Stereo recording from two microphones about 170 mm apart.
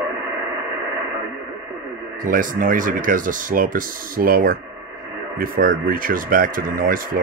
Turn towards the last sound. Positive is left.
turn(degrees=-55)  # may be behind; listen again after turning